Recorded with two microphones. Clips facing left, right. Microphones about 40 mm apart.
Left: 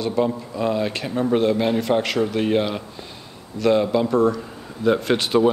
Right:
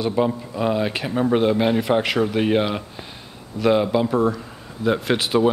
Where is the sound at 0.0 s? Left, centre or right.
Centre.